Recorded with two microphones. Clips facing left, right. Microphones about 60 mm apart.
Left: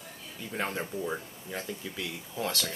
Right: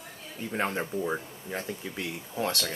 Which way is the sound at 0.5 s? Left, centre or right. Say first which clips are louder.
Right 3 dB; right.